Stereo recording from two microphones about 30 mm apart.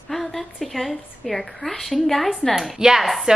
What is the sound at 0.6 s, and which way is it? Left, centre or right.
A woman's voice, centre.